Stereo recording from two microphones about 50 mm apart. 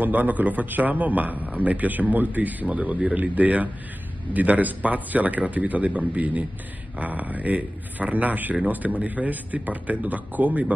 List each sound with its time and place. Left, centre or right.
0.0 s a man's voice: right